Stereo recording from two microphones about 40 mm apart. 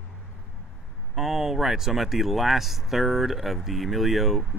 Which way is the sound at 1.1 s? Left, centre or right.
Centre.